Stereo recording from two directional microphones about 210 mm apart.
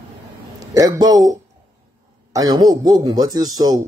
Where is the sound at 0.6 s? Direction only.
15° right (ahead or behind).